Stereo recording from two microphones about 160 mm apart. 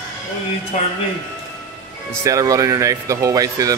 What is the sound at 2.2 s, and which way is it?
Speech, 20° right (ahead or behind).